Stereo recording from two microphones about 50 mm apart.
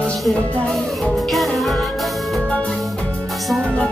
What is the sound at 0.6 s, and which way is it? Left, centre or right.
Music, centre.